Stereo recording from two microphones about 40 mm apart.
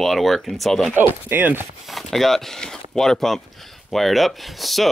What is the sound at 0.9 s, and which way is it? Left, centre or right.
Speech, right.